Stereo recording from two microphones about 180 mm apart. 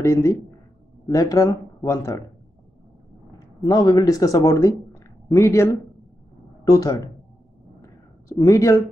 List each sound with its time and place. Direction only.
0.0 s speech: 15° left (ahead or behind)
3.3 s speech: 20° left (ahead or behind)
7.8 s a sound: 20° left (ahead or behind)